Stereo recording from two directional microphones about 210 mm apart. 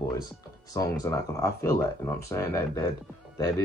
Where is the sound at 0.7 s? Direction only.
15° left (ahead or behind).